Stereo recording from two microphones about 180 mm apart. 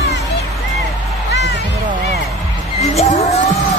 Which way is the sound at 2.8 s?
35° left (ahead or behind).